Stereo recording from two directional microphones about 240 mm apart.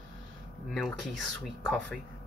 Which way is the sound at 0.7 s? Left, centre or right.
Centre.